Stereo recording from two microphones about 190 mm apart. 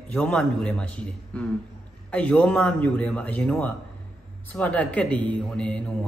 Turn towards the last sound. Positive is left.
turn(degrees=5)  # may be behind; listen again after turning